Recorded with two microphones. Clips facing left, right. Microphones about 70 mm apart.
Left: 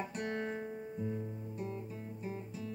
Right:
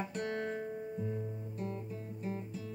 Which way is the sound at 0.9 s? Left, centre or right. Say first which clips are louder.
Left 2 dB; centre.